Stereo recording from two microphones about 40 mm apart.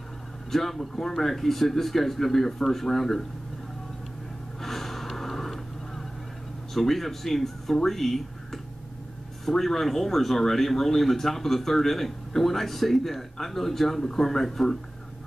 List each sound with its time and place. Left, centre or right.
0.5 s speech: centre
4.6 s a sound: centre
6.7 s speech: centre